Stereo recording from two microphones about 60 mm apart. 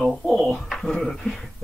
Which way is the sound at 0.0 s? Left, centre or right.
Centre.